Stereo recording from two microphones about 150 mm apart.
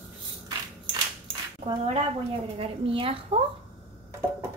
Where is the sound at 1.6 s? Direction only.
40° right (ahead or behind).